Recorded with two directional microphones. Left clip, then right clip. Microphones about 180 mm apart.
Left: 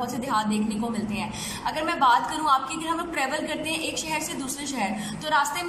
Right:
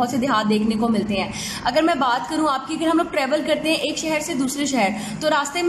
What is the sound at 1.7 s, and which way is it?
A woman's voice, 30° right (ahead or behind).